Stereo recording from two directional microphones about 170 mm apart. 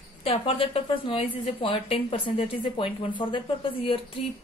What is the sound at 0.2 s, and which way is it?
A woman's voice, 35° left (ahead or behind).